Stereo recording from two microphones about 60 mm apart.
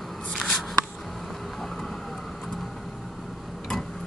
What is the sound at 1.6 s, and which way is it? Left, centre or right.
Vehicle, centre.